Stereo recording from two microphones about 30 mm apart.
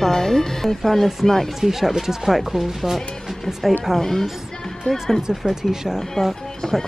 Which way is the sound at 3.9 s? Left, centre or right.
Centre.